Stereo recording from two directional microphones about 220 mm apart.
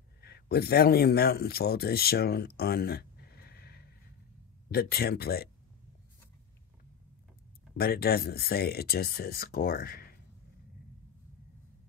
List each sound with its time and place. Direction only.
0.2 s speech: 45° left (ahead or behind)
7.7 s speech: 45° left (ahead or behind)